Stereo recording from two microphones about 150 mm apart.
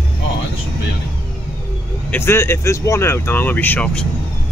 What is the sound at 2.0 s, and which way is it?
Speech, 15° left (ahead or behind).